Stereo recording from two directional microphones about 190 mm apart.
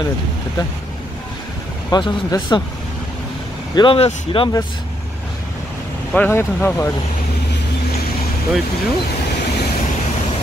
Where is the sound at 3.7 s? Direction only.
25° left (ahead or behind).